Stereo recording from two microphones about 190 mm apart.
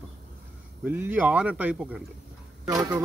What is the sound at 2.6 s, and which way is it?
Speech, 20° right (ahead or behind).